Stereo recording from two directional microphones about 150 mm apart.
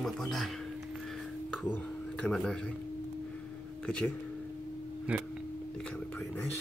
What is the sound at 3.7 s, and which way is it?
Speech, 5° left (ahead or behind).